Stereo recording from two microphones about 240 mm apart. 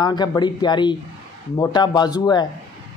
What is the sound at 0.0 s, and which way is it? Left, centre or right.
Speech, centre.